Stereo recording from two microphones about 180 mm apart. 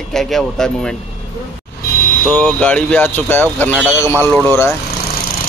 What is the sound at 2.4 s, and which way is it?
Speech, 5° left (ahead or behind).